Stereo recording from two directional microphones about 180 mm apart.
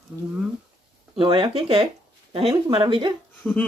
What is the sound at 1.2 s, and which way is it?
Speech, 30° right (ahead or behind).